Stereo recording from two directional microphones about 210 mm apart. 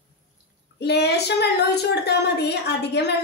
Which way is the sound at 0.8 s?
50° left (ahead or behind).